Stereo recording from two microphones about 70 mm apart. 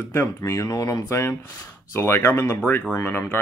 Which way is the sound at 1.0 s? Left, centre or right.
Left.